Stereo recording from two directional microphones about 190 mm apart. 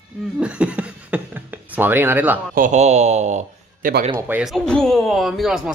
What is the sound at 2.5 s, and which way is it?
A man's voice, 40° right (ahead or behind).